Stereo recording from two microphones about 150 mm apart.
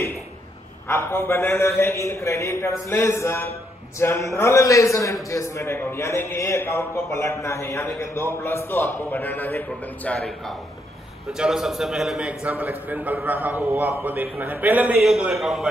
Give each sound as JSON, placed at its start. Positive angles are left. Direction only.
{"t": 0.8, "sound": "a man's voice", "side_deg": 15}